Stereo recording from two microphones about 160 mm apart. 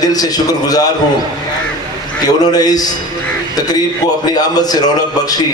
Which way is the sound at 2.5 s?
25° left (ahead or behind).